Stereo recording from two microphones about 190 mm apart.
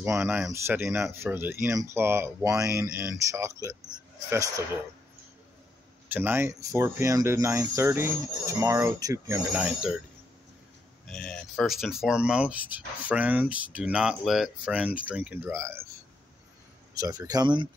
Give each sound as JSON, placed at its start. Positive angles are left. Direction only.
{"t": 0.0, "sound": "speech", "side_deg": -10}
{"t": 6.0, "sound": "speech", "side_deg": -10}
{"t": 11.1, "sound": "speech", "side_deg": 5}
{"t": 16.9, "sound": "speech", "side_deg": -20}